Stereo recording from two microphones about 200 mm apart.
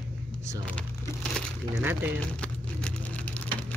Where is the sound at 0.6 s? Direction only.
5° left (ahead or behind).